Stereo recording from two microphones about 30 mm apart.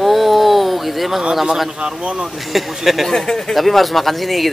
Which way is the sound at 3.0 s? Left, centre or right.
Centre.